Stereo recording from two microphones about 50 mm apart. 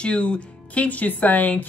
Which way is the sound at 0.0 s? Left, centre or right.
Left.